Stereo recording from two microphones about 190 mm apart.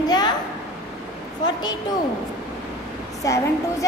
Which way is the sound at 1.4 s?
20° left (ahead or behind).